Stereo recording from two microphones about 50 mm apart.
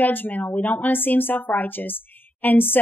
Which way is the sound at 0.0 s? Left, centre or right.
Left.